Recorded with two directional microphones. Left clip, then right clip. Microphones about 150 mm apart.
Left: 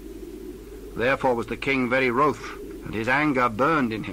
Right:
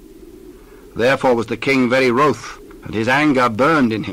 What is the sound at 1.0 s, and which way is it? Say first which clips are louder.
Speech: right 7 dB; 35° right (ahead or behind).